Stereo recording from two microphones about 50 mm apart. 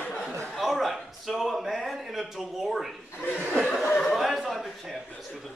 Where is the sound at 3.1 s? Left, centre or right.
Left.